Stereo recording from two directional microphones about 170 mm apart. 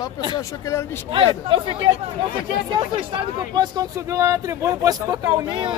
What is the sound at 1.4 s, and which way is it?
Speech, 30° right (ahead or behind).